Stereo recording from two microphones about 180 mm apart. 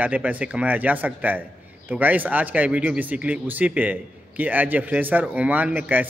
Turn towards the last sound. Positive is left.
turn(degrees=-10)  # may be behind; listen again after turning